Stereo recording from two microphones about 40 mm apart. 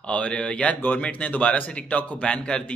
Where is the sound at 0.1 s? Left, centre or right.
Left.